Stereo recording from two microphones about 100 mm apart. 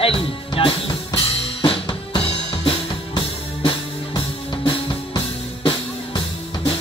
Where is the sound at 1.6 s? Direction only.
50° left (ahead or behind).